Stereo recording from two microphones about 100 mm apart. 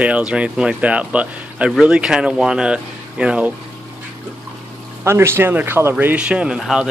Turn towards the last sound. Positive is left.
turn(degrees=-5)  # may be behind; listen again after turning